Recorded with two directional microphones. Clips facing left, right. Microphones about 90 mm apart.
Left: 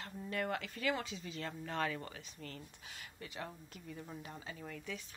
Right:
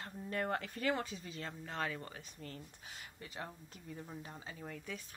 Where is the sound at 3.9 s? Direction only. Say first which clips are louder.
Even; 15° right (ahead or behind).